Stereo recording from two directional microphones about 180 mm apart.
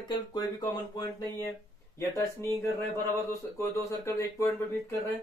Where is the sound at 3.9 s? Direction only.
15° left (ahead or behind).